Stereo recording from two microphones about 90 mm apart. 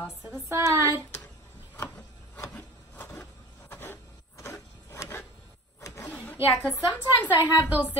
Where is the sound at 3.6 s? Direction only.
25° left (ahead or behind).